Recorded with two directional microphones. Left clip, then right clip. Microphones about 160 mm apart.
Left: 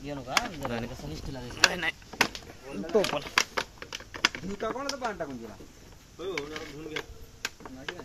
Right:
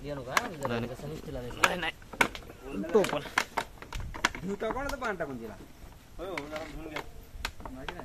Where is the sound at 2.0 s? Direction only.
20° left (ahead or behind).